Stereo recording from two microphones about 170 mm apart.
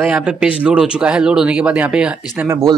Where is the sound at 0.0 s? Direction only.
5° right (ahead or behind).